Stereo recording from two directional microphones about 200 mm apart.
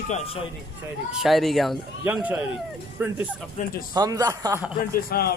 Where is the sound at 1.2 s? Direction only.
Centre (ahead or behind).